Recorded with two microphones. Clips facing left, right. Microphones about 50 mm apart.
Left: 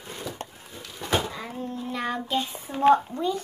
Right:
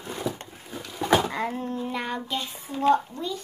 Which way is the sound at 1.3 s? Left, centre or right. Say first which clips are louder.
Right 5 dB; right.